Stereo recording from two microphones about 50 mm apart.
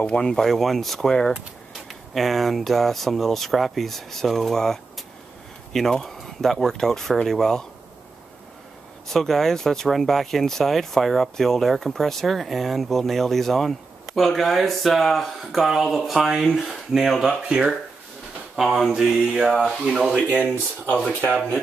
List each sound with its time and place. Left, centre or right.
0.0 s speech: centre
0.4 s speech: centre
9.1 s speech: centre
16.4 s speech: centre
17.5 s mantra: centre
18.6 s speech: centre
18.9 s mantra: centre